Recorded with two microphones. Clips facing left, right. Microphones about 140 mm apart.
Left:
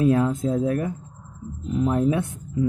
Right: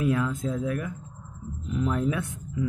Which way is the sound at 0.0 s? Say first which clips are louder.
Left 6 dB; 30° left (ahead or behind).